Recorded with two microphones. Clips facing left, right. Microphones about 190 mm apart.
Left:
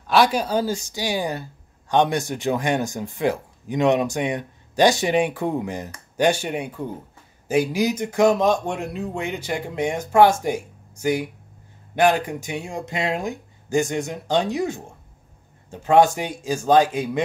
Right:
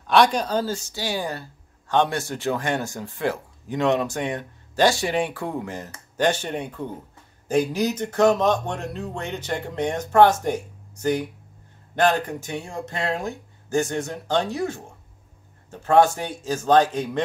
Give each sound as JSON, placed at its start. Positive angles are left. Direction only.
{"t": 0.0, "sound": "speech", "side_deg": 5}